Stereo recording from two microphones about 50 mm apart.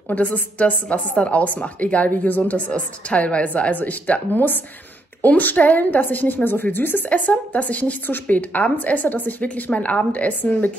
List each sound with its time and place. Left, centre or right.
0.1 s a woman's voice: left
7.1 s a woman's voice: left
9.7 s a woman's voice: left